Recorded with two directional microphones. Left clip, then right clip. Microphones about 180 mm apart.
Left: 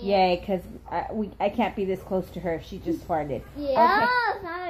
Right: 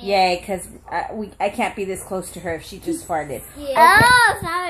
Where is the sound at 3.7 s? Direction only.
35° right (ahead or behind).